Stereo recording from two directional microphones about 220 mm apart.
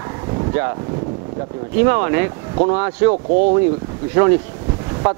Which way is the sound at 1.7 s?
15° right (ahead or behind).